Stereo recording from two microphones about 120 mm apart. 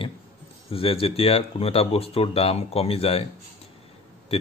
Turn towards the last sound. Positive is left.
turn(degrees=55)  # may be behind; listen again after turning